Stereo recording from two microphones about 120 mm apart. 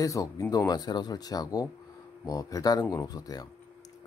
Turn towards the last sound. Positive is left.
turn(degrees=30)  # may be behind; listen again after turning